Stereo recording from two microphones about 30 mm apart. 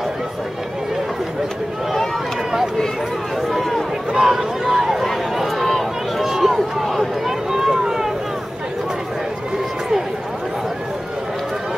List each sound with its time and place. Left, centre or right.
3.3 s run: centre
4.1 s speech: centre
5.3 s a sound: centre
6.2 s run: centre
6.8 s run: centre
7.2 s a sound: centre